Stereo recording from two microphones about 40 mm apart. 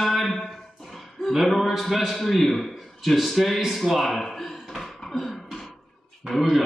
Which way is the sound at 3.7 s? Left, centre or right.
Centre.